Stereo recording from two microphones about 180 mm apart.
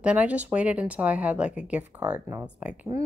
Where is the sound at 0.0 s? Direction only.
5° right (ahead or behind).